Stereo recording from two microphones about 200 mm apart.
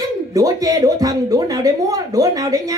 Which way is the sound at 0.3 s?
15° right (ahead or behind).